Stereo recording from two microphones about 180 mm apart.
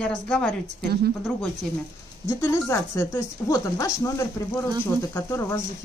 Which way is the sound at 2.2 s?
15° left (ahead or behind).